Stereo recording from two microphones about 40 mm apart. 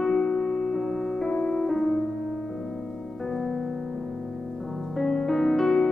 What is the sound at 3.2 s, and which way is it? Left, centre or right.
Music, centre.